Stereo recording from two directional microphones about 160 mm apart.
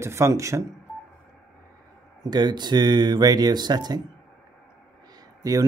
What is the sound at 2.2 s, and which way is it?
Speech, 25° right (ahead or behind).